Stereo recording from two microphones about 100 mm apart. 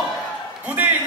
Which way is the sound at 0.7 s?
15° right (ahead or behind).